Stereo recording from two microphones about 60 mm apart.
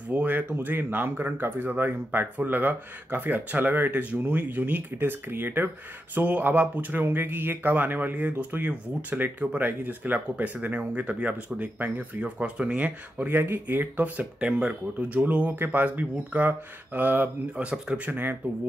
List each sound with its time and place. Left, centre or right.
0.1 s speech: right
9.1 s speech: right
17.6 s speech: centre
18.0 s speech: right